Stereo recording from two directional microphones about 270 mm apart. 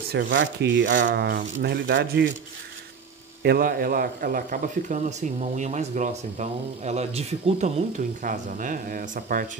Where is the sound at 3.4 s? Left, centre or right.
Right.